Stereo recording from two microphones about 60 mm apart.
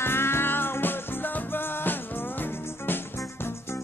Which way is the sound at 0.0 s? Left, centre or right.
Left.